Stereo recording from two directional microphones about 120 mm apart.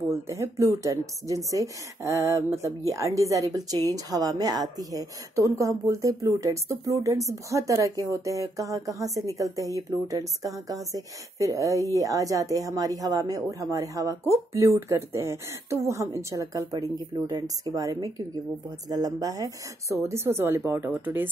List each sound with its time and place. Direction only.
0.1 s speech: 25° right (ahead or behind)